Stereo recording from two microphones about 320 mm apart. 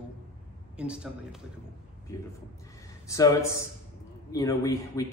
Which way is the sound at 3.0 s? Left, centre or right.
Centre.